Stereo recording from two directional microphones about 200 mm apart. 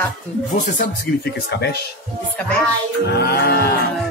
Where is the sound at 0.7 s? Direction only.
55° left (ahead or behind).